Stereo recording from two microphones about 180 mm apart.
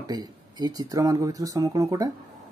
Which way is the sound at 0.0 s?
20° right (ahead or behind).